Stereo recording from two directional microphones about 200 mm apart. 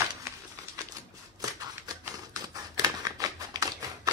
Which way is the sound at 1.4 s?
20° right (ahead or behind).